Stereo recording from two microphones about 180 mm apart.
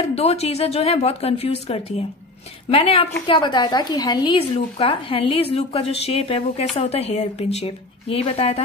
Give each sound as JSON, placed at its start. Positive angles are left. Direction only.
{"t": 0.1, "sound": "a woman's voice", "side_deg": 35}